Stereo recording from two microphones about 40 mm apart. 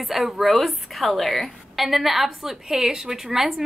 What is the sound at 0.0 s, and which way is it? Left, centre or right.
A woman's voice, centre.